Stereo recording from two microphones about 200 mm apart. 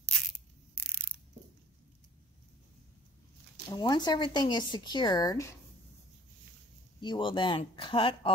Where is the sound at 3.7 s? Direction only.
20° left (ahead or behind).